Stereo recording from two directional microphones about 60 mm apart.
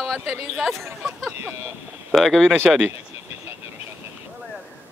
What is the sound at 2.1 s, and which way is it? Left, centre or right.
Speech, centre.